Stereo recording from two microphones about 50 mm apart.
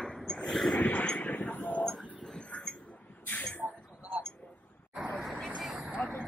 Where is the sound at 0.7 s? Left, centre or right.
Left.